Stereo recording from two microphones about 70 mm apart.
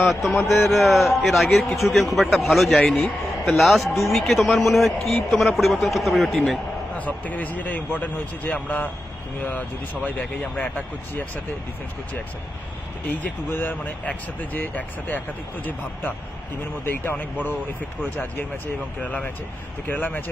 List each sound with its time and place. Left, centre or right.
0.0 s a man's voice: centre
7.0 s speech: left
13.1 s speech: left
19.9 s speech: left